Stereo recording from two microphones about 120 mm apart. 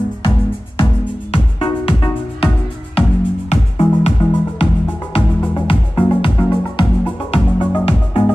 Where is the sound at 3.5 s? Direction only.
60° left (ahead or behind).